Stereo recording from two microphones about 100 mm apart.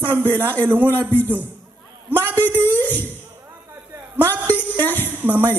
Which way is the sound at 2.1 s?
20° right (ahead or behind).